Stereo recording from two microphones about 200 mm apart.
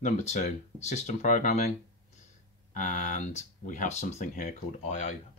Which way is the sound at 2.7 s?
40° left (ahead or behind).